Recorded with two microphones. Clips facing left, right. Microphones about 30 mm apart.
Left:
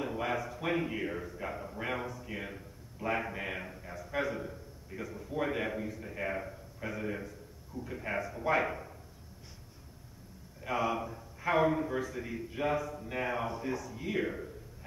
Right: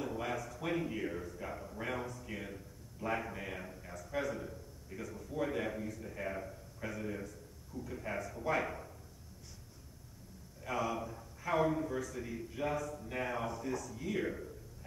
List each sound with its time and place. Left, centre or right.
0.0 s a sound: left
2.3 s a man's voice: left
10.6 s a man's voice: left